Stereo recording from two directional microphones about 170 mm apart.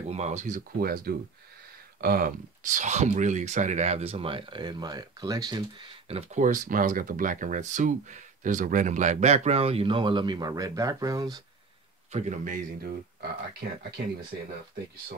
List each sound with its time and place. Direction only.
0.1 s speech: 40° right (ahead or behind)
0.7 s speech: 60° right (ahead or behind); by 11.4 s 20° right (ahead or behind)
12.1 s speech: 45° right (ahead or behind); by 14.0 s 65° right (ahead or behind)